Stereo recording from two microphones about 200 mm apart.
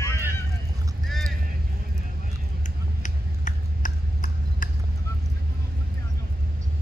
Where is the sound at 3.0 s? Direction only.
40° left (ahead or behind).